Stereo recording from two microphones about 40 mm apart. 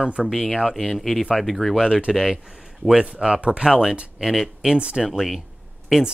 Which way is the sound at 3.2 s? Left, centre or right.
Right.